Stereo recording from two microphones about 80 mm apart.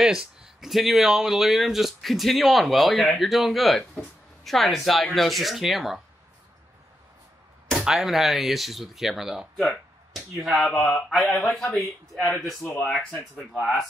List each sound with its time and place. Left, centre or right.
0.0 s speech: centre
7.8 s speech: centre
12.6 s speech: centre
12.9 s speech: centre